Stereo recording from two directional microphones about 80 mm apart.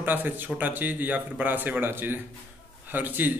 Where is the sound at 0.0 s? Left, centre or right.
Right.